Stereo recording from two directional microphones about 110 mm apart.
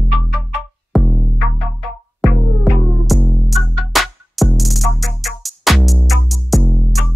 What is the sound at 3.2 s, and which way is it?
Music, 10° right (ahead or behind).